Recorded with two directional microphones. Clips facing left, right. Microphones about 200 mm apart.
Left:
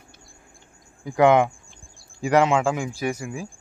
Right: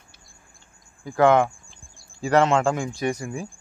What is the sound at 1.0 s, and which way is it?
Speech, 20° left (ahead or behind).